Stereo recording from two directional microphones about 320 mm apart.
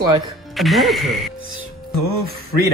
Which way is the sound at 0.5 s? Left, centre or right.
Centre.